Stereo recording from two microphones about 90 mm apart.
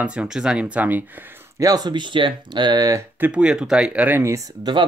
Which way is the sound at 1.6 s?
45° right (ahead or behind).